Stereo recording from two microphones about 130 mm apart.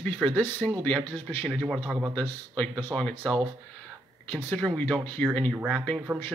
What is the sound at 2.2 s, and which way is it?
Speech, 10° left (ahead or behind).